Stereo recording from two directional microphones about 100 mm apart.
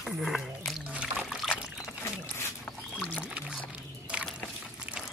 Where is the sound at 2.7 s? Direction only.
10° left (ahead or behind).